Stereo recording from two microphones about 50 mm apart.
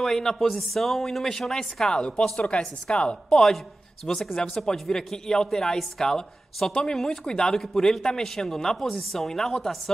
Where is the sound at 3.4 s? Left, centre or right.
Centre.